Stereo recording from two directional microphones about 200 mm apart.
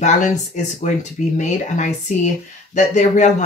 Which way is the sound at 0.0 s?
35° left (ahead or behind).